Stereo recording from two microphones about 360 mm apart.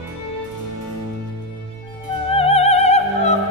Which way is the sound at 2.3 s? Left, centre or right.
Centre.